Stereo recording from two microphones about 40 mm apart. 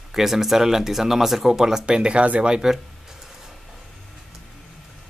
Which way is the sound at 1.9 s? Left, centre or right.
Right.